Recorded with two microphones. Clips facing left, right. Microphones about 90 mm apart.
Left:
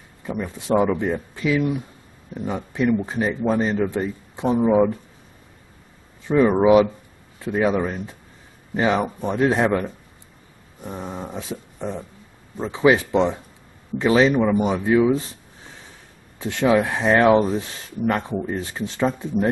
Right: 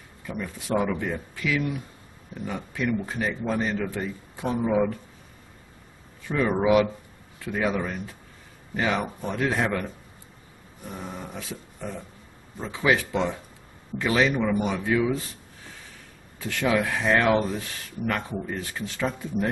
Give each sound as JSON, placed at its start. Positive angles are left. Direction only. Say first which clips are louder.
{"t": 0.2, "sound": "speech", "louder": "left 5 dB", "side_deg": 25}
{"t": 6.2, "sound": "speech", "louder": "left 7 dB", "side_deg": 25}
{"t": 10.8, "sound": "a sound", "louder": "left 5 dB", "side_deg": 25}
{"t": 12.5, "sound": "speech", "louder": "left 6 dB", "side_deg": 25}
{"t": 16.3, "sound": "speech", "louder": "left 6 dB", "side_deg": 25}